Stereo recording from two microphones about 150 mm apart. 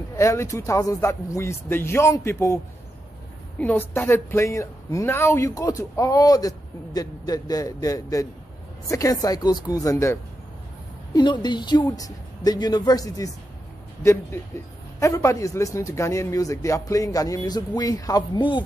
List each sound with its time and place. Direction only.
0.1 s speech: 20° left (ahead or behind)
11.1 s speech: 30° left (ahead or behind)
15.0 s speech: 20° left (ahead or behind)